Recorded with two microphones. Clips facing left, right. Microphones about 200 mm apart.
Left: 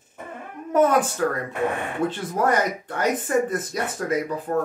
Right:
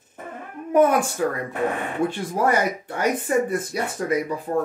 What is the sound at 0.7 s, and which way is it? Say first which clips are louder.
Speech: right 1 dB; 10° right (ahead or behind).